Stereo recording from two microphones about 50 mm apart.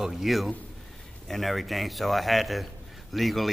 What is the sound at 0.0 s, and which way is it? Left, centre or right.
A man's voice, centre.